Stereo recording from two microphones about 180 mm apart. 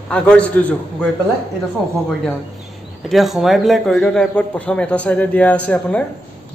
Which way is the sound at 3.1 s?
Centre (ahead or behind).